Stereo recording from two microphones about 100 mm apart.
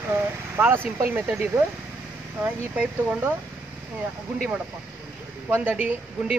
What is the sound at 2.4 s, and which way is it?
Speech, 15° right (ahead or behind).